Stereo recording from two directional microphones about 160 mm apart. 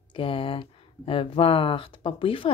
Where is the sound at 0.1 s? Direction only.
35° left (ahead or behind).